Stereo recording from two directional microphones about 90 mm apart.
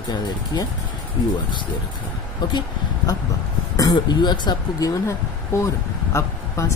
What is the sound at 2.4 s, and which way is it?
Speech, 55° left (ahead or behind).